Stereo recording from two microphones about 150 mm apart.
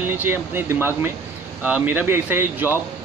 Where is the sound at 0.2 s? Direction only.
15° right (ahead or behind).